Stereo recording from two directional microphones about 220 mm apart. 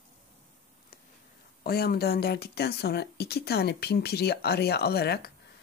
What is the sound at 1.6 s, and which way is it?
Speech, 45° left (ahead or behind).